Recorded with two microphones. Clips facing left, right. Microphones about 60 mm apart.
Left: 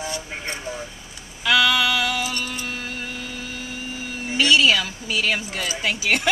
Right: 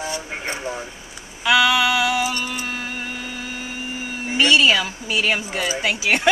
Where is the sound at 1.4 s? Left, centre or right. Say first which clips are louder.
Right 2 dB; centre.